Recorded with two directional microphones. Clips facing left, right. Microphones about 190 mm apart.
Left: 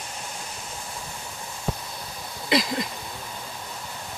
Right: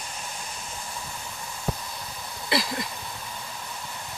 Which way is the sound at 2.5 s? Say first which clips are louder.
Left 4 dB; 20° left (ahead or behind).